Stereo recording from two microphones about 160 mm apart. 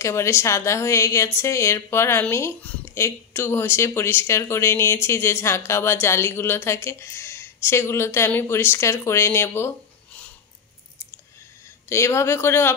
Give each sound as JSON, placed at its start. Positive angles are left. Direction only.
{"t": 0.0, "sound": "a woman's voice", "side_deg": 15}
{"t": 11.9, "sound": "a woman's voice", "side_deg": 15}